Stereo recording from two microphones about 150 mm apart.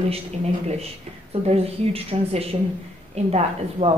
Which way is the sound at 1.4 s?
40° right (ahead or behind).